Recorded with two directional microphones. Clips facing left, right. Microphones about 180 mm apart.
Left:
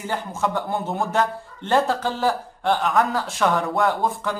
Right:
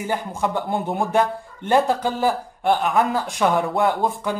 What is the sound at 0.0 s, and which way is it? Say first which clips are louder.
Speech: right 1 dB; 15° right (ahead or behind).